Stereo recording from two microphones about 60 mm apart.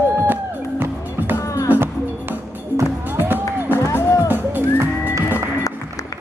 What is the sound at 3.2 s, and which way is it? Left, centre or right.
Music, right.